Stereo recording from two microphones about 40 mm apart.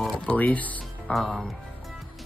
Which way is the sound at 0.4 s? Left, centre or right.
Left.